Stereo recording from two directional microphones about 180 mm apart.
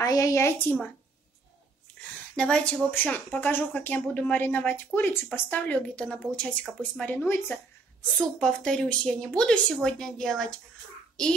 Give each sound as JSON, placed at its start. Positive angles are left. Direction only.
{"t": 0.0, "sound": "speech", "side_deg": 20}
{"t": 2.3, "sound": "speech", "side_deg": 5}